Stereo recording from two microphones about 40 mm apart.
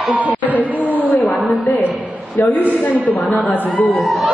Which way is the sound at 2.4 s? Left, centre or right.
Left.